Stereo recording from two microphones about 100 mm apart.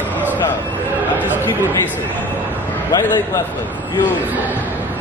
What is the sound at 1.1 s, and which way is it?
Speech, 20° right (ahead or behind).